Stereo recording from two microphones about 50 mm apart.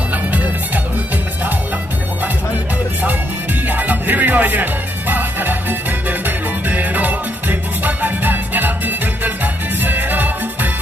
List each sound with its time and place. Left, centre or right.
0.1 s music: right
3.6 s music: right